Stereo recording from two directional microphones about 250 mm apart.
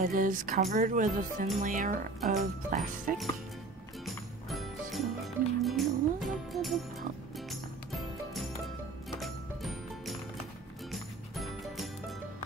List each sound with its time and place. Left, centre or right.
0.0 s music: right
4.0 s music: centre
9.2 s music: centre